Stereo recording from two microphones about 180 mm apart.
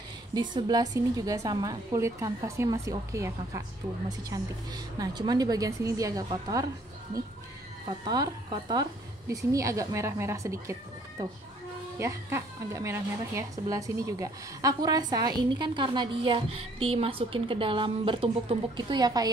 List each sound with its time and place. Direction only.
0.3 s a woman's voice: 25° right (ahead or behind)
7.8 s a woman's voice: 25° right (ahead or behind)